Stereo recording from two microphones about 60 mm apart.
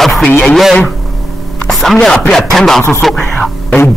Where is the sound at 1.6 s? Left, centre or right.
Centre.